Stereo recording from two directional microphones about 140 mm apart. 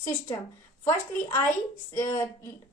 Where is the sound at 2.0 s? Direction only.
15° left (ahead or behind).